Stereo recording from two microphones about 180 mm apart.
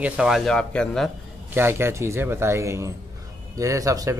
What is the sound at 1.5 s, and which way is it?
Speech, 10° right (ahead or behind).